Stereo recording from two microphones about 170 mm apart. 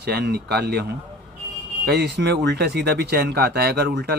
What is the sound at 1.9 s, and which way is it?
Speech, 75° right (ahead or behind).